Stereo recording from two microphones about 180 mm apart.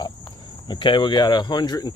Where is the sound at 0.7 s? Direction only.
25° left (ahead or behind).